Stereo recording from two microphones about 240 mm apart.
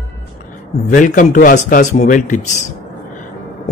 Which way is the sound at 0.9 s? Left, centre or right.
Left.